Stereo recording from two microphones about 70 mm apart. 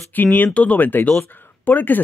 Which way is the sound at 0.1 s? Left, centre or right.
Left.